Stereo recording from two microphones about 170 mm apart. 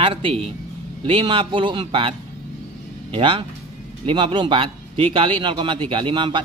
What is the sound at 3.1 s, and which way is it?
A man's voice, 30° right (ahead or behind).